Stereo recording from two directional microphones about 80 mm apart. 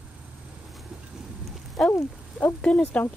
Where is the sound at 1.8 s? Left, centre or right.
Centre.